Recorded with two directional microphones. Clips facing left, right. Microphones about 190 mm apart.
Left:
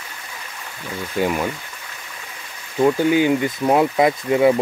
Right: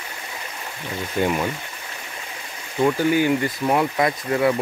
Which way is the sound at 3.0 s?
15° left (ahead or behind).